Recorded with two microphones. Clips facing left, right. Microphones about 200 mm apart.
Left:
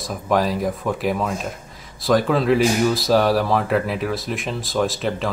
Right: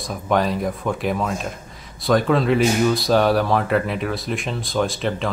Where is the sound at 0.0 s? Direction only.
Centre (ahead or behind).